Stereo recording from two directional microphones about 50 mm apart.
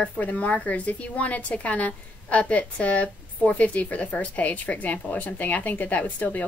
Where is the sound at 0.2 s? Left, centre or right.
Left.